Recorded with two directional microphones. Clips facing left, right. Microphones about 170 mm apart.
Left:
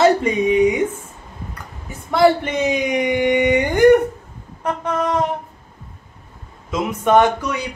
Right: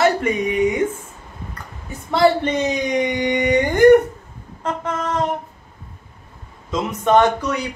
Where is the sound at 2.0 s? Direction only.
10° left (ahead or behind).